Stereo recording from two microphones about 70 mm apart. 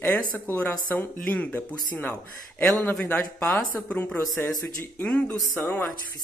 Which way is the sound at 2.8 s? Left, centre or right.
Left.